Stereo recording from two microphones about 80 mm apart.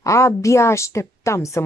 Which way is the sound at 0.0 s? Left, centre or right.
Left.